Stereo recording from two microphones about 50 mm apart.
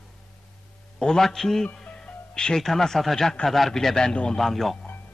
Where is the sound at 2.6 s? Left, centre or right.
Centre.